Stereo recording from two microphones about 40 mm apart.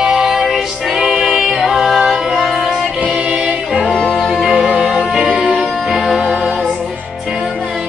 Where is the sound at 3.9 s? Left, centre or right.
Centre.